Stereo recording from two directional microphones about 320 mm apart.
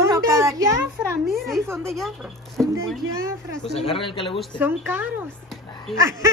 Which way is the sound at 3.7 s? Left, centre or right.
Centre.